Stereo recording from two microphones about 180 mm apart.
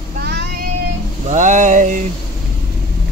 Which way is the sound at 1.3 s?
45° right (ahead or behind).